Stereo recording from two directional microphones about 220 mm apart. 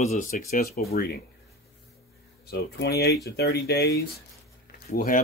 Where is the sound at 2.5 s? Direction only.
45° left (ahead or behind).